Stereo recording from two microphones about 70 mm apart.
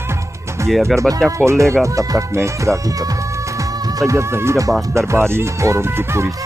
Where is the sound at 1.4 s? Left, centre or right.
Right.